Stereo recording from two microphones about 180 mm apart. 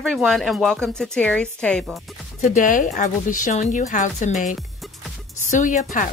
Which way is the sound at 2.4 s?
45° left (ahead or behind).